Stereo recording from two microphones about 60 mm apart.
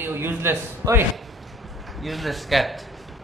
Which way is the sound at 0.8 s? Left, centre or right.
Right.